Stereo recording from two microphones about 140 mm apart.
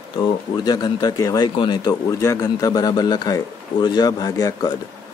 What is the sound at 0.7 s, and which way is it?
Speech, 30° left (ahead or behind).